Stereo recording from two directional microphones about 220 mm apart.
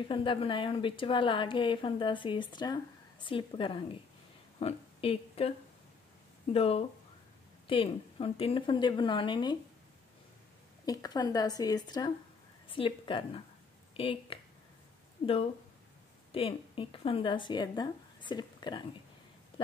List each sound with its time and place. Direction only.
0.1 s a woman's voice: 25° left (ahead or behind)
6.5 s a woman's voice: 25° left (ahead or behind)
10.9 s a woman's voice: 15° left (ahead or behind)
16.3 s speech: 25° left (ahead or behind)